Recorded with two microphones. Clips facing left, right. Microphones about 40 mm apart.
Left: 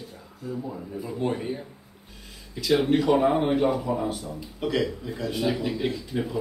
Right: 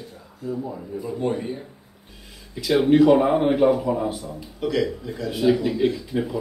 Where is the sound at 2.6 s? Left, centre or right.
Centre.